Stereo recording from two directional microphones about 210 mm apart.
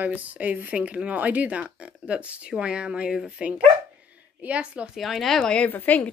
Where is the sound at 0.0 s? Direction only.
5° right (ahead or behind).